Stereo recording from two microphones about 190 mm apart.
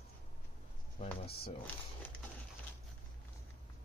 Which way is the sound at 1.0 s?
30° left (ahead or behind).